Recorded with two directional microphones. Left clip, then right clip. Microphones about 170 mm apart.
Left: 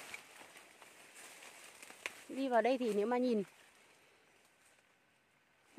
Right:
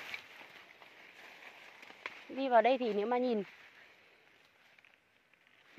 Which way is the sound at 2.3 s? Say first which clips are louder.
Right 5 dB; 20° left (ahead or behind).